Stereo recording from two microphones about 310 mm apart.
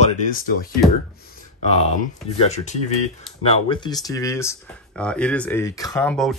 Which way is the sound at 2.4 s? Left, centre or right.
Left.